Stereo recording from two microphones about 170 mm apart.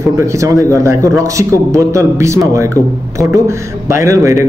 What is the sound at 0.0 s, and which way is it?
Speech, 15° right (ahead or behind).